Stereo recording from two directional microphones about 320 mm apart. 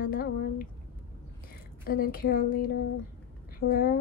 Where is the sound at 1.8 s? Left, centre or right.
Left.